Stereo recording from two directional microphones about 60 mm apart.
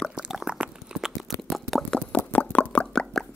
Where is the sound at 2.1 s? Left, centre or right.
Left.